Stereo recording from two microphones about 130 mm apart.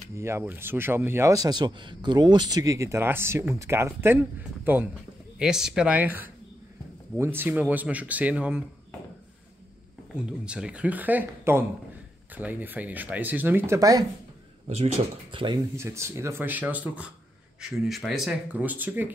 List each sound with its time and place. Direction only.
0.1 s a man's voice: 20° right (ahead or behind)
10.1 s speech: 5° right (ahead or behind)
13.7 s a man's voice: 25° right (ahead or behind)
14.7 s speech: 50° right (ahead or behind)
15.7 s speech: 20° right (ahead or behind)